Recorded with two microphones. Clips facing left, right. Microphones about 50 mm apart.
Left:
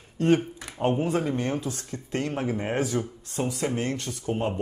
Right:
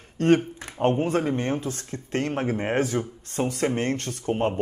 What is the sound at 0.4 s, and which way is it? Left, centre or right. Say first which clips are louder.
Speech: right 3 dB; right.